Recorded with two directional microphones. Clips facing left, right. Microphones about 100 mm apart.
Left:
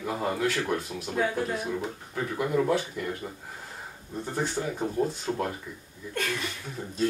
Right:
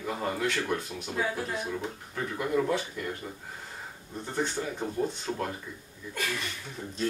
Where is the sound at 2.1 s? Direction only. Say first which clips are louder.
Left 2 dB; 10° left (ahead or behind).